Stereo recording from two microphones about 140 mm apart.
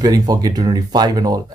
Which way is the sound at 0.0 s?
25° right (ahead or behind).